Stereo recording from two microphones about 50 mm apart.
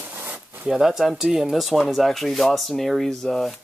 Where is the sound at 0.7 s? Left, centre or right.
Centre.